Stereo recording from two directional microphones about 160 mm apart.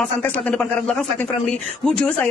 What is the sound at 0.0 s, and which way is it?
A man's voice, 5° left (ahead or behind).